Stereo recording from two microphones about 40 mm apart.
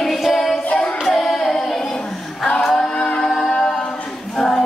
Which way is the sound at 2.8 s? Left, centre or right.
Centre.